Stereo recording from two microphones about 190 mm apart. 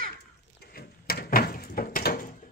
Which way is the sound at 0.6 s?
55° left (ahead or behind).